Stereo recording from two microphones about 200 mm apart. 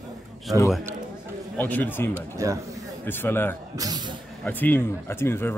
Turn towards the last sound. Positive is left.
turn(degrees=10)  # may be behind; listen again after turning